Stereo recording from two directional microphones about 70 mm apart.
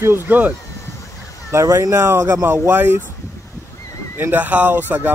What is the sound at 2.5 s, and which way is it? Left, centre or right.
Speech, right.